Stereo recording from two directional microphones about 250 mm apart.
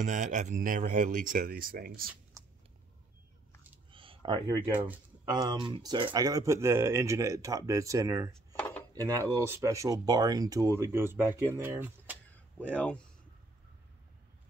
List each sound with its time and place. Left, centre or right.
0.0 s speech: right
2.4 s cat: centre
3.9 s a sound: centre
5.3 s speech: centre
8.3 s dishes: centre
8.9 s speech: centre
12.5 s speech: centre